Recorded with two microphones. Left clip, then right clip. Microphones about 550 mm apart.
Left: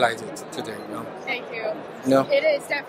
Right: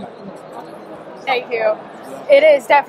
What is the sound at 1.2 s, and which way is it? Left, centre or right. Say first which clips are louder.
A woman's voice: right 12 dB; right.